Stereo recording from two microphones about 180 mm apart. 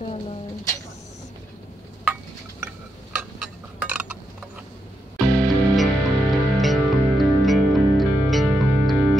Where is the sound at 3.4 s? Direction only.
5° right (ahead or behind).